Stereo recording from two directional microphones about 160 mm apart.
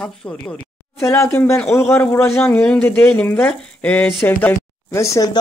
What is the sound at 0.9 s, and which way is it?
Speech, 15° left (ahead or behind).